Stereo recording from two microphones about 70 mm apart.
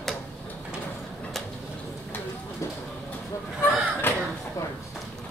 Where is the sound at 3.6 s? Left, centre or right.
Left.